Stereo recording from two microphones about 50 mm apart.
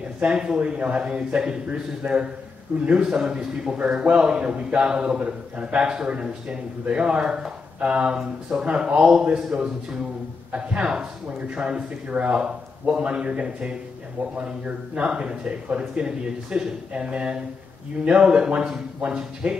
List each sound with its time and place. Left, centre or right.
0.2 s a man's voice: centre
15.0 s a man's voice: centre